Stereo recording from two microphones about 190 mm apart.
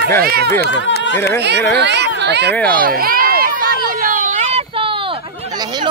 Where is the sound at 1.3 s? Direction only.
60° right (ahead or behind).